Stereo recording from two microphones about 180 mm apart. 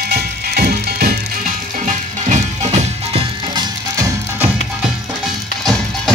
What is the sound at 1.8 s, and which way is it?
Music, 40° right (ahead or behind).